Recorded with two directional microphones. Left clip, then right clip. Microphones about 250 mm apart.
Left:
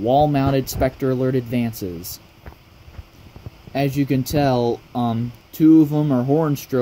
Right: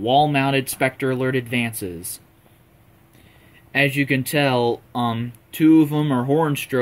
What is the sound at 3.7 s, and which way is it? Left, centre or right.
Speech, centre.